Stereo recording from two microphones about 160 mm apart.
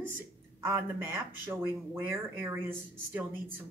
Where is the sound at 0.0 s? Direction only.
15° right (ahead or behind).